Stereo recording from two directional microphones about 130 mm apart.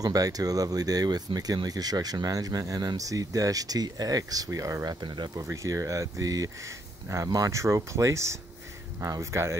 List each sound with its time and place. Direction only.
0.0 s speech: 30° right (ahead or behind)